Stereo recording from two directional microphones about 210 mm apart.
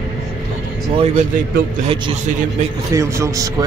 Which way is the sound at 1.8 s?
25° right (ahead or behind).